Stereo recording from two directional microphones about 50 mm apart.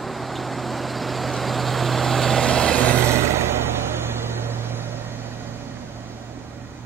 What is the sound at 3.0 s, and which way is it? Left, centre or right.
Vehicle, right.